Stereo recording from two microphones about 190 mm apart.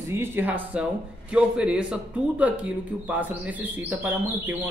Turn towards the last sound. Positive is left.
turn(degrees=-10)  # may be behind; listen again after turning